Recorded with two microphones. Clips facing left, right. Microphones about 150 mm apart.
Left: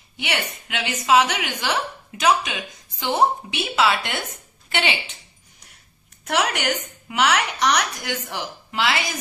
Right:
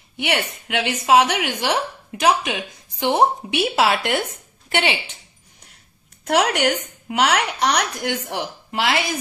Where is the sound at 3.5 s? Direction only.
65° right (ahead or behind).